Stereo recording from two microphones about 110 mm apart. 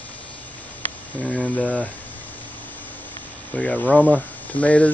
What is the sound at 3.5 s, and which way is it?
Speech, 15° left (ahead or behind).